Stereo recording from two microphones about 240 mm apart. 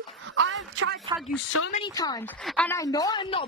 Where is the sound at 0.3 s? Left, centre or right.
Right.